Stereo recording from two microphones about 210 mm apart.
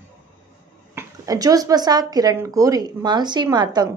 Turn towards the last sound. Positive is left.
turn(degrees=-20)  # may be behind; listen again after turning